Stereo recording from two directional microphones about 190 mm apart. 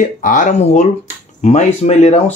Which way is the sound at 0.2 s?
40° left (ahead or behind).